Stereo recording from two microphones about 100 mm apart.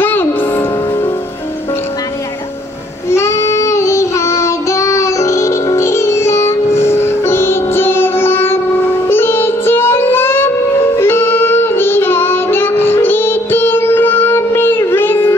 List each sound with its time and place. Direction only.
0.0 s music: 20° left (ahead or behind)
3.1 s child singing: 25° left (ahead or behind)